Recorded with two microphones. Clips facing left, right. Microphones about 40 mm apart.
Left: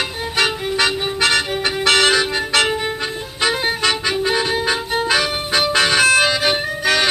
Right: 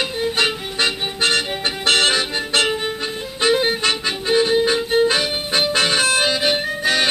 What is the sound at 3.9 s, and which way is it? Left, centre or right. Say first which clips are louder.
Music: left 1 dB; left.